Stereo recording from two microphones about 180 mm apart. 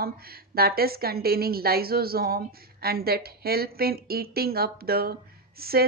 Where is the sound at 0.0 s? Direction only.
60° right (ahead or behind).